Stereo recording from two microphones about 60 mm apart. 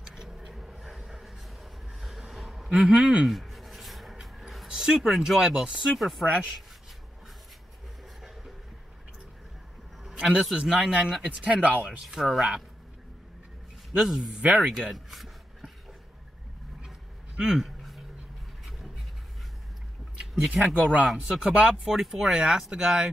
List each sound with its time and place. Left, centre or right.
0.2 s a sound: centre
3.3 s writing: centre
4.6 s speech: centre
10.0 s speech: centre
12.2 s speech: centre
14.0 s speech: centre
14.4 s speech: right
14.9 s dog: centre
17.4 s speech: centre
17.6 s a sound: centre
20.6 s speech: right
21.1 s speech: centre